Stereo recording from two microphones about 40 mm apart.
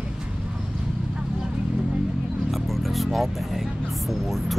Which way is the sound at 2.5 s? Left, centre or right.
Centre.